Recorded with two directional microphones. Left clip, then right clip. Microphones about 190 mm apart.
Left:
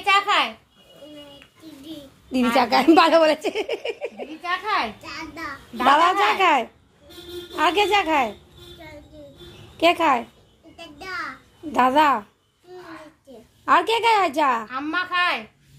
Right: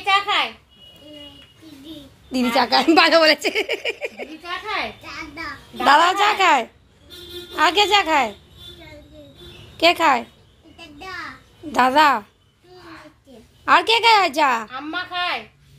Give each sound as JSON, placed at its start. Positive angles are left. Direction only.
{"t": 0.0, "sound": "a sound", "side_deg": 65}
{"t": 2.3, "sound": "speech", "side_deg": 5}
{"t": 5.9, "sound": "speech", "side_deg": 0}
{"t": 9.8, "sound": "speech", "side_deg": 0}
{"t": 10.8, "sound": "a sound", "side_deg": 5}
{"t": 11.7, "sound": "speech", "side_deg": -5}
{"t": 13.7, "sound": "speech", "side_deg": -5}
{"t": 14.7, "sound": "speech", "side_deg": 65}